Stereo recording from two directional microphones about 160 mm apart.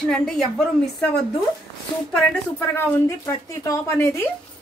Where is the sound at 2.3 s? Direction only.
10° left (ahead or behind).